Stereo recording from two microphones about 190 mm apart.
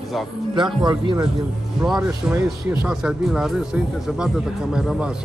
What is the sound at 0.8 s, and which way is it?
Speech, 20° right (ahead or behind).